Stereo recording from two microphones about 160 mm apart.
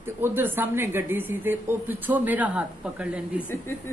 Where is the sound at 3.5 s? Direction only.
15° left (ahead or behind).